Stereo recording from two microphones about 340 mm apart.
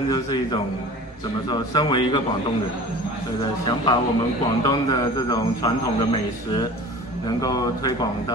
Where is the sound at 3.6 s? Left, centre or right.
Centre.